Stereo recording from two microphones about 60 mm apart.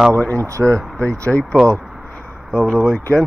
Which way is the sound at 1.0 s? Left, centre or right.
Centre.